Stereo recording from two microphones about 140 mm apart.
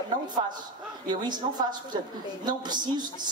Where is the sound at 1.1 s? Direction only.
30° right (ahead or behind).